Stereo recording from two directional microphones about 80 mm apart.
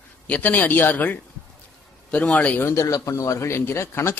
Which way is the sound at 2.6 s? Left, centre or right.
Left.